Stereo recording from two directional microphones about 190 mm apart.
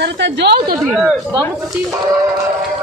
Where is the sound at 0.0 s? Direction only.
65° right (ahead or behind).